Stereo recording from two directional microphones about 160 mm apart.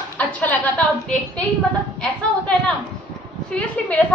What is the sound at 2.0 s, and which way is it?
A woman's voice, 5° left (ahead or behind).